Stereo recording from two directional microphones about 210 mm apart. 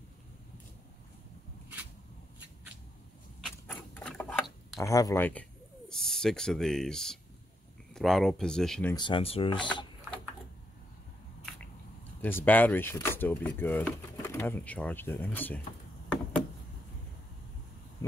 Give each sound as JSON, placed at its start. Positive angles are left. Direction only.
{"t": 3.3, "sound": "a sound", "side_deg": 5}
{"t": 4.7, "sound": "speech", "side_deg": 15}
{"t": 8.9, "sound": "speech", "side_deg": 25}
{"t": 12.2, "sound": "speech", "side_deg": 10}